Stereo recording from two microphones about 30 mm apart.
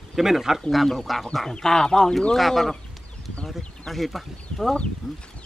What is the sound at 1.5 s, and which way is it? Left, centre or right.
Speech, left.